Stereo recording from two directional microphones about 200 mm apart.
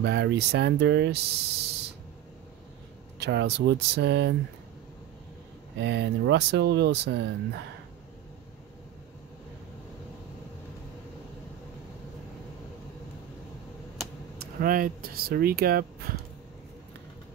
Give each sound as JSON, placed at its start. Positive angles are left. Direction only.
{"t": 0.0, "sound": "speech", "side_deg": -55}
{"t": 3.2, "sound": "speech", "side_deg": -60}
{"t": 5.8, "sound": "speech", "side_deg": -60}
{"t": 14.4, "sound": "speech", "side_deg": -45}